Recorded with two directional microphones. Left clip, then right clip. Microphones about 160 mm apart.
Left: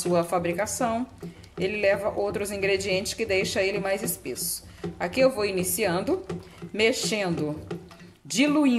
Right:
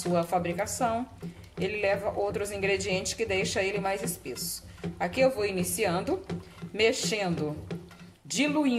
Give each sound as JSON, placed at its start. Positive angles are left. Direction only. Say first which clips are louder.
{"t": 0.0, "sound": "a woman's voice", "louder": "left 3 dB", "side_deg": 20}